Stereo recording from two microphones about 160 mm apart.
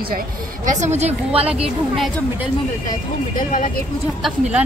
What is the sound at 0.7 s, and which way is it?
Speech, 45° right (ahead or behind).